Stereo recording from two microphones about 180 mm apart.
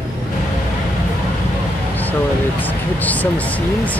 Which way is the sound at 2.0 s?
10° left (ahead or behind).